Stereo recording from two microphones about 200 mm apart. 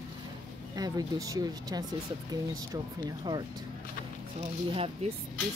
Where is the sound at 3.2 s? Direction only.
20° right (ahead or behind).